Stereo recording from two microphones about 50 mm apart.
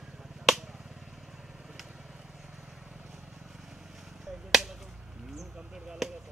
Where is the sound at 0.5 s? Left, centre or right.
Centre.